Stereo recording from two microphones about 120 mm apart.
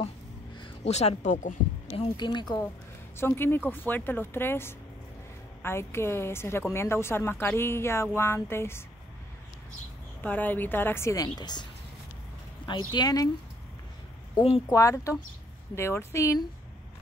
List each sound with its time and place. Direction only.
0.8 s speech: 65° left (ahead or behind); by 1.5 s 85° left
1.9 s speech: 45° left (ahead or behind)
3.2 s a woman's voice: 20° left (ahead or behind)
10.2 s speech: 15° left (ahead or behind)
11.2 s speech: 35° left (ahead or behind)
12.6 s speech: 40° left (ahead or behind)
14.7 s a woman's voice: 30° left (ahead or behind)